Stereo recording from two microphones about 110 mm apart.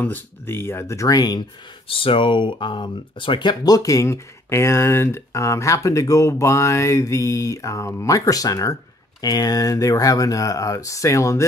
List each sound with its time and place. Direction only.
0.0 s speech: 20° left (ahead or behind); by 1.4 s 35° left (ahead or behind)
1.9 s speech: 55° left (ahead or behind); by 11.4 s 30° left (ahead or behind)